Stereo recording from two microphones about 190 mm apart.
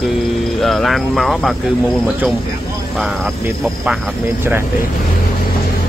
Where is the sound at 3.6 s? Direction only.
Centre (ahead or behind).